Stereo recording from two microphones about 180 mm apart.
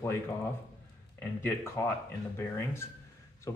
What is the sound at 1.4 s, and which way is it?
Speech, 15° left (ahead or behind).